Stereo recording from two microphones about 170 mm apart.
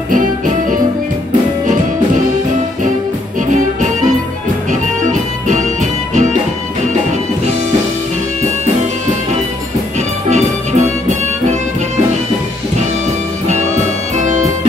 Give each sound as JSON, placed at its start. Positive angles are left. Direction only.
{"t": 3.5, "sound": "music", "side_deg": -45}
{"t": 9.9, "sound": "music", "side_deg": -40}
{"t": 14.1, "sound": "music", "side_deg": -45}